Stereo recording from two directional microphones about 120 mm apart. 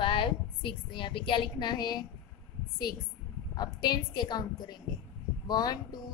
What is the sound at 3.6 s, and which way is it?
A woman's voice, 35° left (ahead or behind).